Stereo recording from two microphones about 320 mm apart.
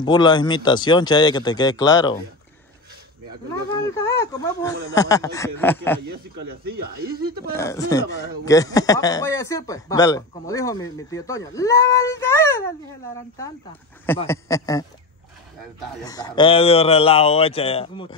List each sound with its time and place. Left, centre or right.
0.0 s speech: centre
3.9 s speech: centre
6.7 s speech: right
7.5 s speech: centre
16.0 s speech: centre